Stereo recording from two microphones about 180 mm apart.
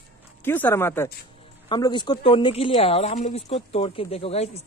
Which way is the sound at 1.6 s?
25° left (ahead or behind).